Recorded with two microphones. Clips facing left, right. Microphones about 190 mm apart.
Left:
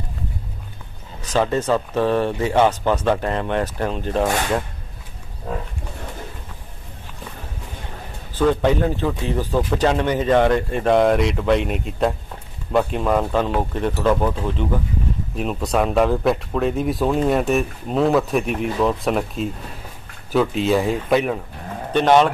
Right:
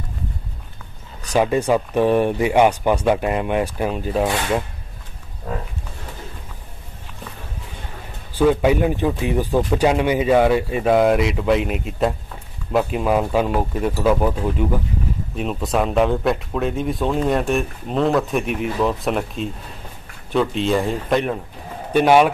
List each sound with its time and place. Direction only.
1.3 s speech: 10° right (ahead or behind)
8.4 s speech: 10° right (ahead or behind)
21.9 s speech: 10° right (ahead or behind)